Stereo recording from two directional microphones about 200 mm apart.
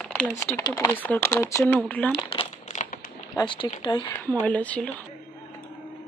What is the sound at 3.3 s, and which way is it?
Speech, 25° left (ahead or behind).